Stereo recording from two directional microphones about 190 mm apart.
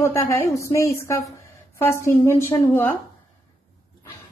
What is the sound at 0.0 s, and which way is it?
A woman's voice, 15° left (ahead or behind).